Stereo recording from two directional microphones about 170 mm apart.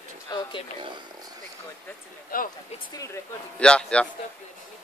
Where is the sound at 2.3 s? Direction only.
55° left (ahead or behind).